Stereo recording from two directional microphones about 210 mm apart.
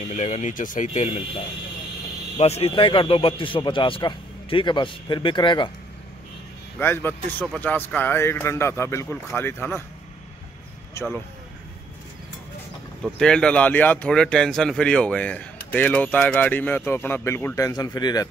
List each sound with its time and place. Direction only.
0.1 s speech: 35° left (ahead or behind)
2.3 s a man's voice: 30° left (ahead or behind)
6.8 s speech: 10° left (ahead or behind)
13.0 s speech: 5° left (ahead or behind); by 18.3 s 20° left (ahead or behind)